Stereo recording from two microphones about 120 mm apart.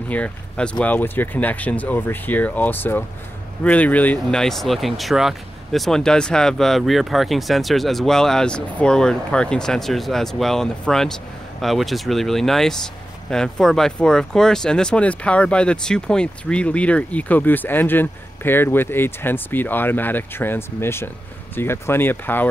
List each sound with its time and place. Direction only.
0.1 s speech: 10° left (ahead or behind)